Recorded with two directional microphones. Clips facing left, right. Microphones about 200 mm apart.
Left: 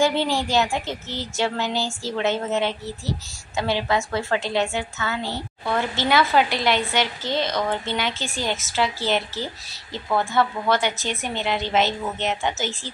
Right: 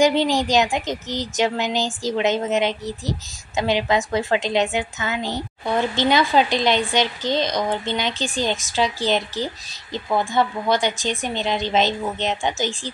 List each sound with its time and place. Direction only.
0.0 s speech: 15° right (ahead or behind)